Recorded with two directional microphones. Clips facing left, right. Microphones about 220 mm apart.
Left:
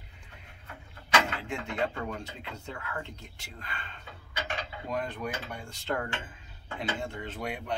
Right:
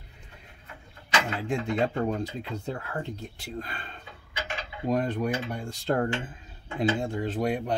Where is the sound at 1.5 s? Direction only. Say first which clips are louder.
Right 9 dB; 35° right (ahead or behind).